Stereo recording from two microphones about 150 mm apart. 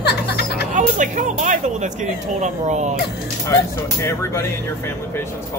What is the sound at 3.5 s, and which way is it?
Speech, 20° left (ahead or behind).